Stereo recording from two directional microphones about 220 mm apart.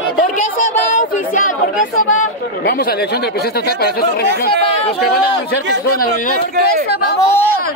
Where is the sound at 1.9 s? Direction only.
70° left (ahead or behind).